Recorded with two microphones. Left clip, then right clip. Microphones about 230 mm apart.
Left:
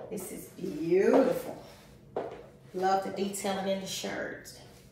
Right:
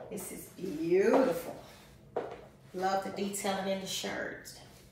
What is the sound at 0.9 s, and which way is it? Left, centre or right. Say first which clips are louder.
Speech: left 2 dB; centre.